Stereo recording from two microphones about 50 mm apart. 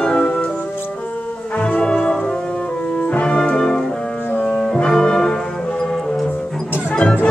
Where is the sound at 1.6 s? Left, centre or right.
Left.